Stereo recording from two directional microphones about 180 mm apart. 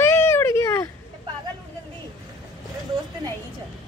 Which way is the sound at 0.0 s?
15° left (ahead or behind).